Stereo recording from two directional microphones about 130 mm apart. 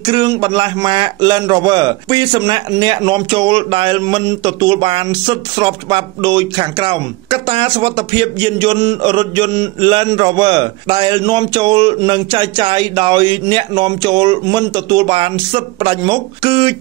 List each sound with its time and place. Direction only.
0.0 s a man's voice: 35° right (ahead or behind)
15.0 s speech: 45° right (ahead or behind)